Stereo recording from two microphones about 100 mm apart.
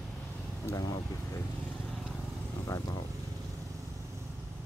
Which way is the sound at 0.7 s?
40° left (ahead or behind).